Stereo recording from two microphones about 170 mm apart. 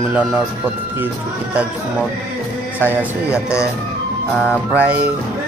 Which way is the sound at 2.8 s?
10° right (ahead or behind).